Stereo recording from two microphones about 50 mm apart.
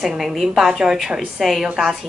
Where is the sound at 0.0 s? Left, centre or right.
Centre.